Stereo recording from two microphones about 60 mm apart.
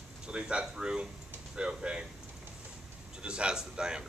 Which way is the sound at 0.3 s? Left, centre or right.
Centre.